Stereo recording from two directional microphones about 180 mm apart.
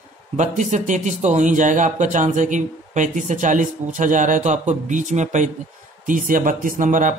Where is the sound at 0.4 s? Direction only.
40° right (ahead or behind).